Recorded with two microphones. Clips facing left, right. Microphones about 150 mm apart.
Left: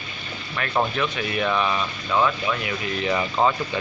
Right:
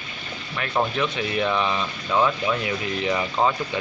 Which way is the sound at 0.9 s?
20° right (ahead or behind).